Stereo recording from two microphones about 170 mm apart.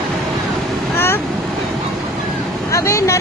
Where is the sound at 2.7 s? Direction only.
20° left (ahead or behind).